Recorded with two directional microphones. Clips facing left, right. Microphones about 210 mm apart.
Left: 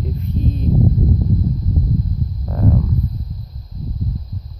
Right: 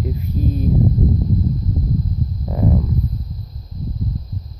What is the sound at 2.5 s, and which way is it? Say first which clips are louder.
Stomach rumble: even; 10° right (ahead or behind).